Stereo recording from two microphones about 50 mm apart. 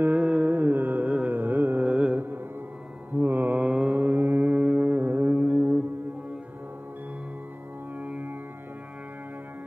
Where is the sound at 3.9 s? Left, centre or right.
Right.